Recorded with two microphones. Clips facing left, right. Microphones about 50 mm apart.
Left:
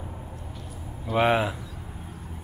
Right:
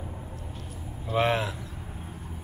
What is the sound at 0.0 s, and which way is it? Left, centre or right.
Vehicle, centre.